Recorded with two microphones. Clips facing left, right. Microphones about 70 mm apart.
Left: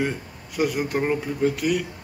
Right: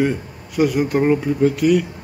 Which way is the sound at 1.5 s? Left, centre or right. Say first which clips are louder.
Right 8 dB; centre.